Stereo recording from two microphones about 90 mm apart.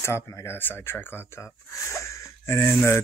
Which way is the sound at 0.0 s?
35° left (ahead or behind).